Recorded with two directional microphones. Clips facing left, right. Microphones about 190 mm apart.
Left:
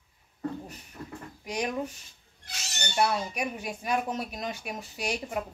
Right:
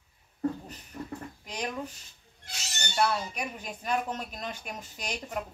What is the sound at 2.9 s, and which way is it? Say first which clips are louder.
Speech: left 1 dB; 15° left (ahead or behind).